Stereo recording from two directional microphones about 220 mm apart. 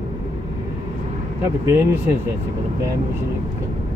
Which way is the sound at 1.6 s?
10° right (ahead or behind).